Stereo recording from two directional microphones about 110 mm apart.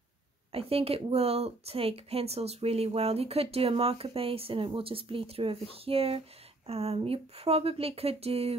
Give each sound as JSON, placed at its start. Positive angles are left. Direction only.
{"t": 0.5, "sound": "speech", "side_deg": -60}